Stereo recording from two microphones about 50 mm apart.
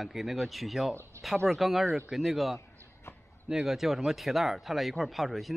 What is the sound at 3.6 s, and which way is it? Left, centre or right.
Speech, centre.